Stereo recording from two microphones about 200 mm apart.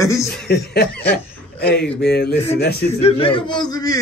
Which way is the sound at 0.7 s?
55° left (ahead or behind).